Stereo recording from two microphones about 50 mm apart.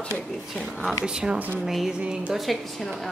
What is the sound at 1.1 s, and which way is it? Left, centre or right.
Speech, centre.